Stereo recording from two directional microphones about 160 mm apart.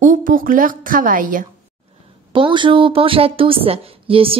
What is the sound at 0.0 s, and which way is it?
A woman's voice, 60° right (ahead or behind).